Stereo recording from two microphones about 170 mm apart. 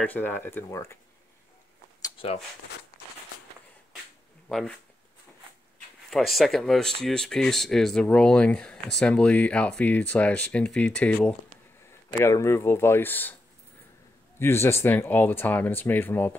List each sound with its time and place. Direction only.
0.0 s speech: 10° left (ahead or behind)
2.0 s a sound: 25° left (ahead or behind)
4.5 s speech: centre (ahead or behind)
6.0 s speech: centre (ahead or behind)
14.4 s speech: 15° left (ahead or behind)